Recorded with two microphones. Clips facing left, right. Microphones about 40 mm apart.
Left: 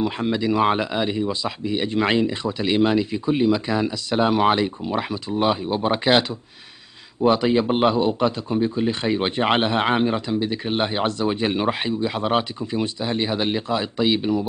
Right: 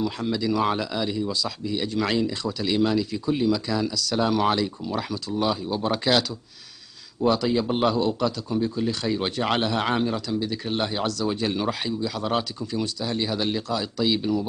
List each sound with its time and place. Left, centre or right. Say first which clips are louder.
0.0 s speech: left 3 dB; left
7.2 s speech: left 4 dB; left